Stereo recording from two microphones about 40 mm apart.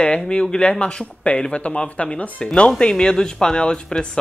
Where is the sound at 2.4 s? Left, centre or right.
Left.